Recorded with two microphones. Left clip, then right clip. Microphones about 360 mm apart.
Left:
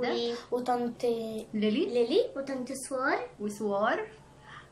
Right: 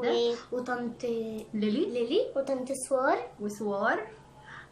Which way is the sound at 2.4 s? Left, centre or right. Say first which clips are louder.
Right 4 dB; centre.